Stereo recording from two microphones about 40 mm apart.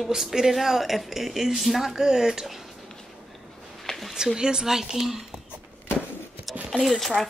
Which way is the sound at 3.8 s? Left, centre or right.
Centre.